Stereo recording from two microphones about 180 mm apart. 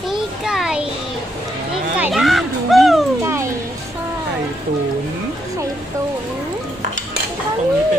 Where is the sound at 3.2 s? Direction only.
15° right (ahead or behind).